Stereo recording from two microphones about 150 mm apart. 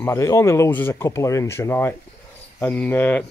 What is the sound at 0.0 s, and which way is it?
Speech, 20° left (ahead or behind).